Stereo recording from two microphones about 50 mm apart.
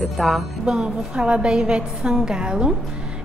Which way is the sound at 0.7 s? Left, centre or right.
Centre.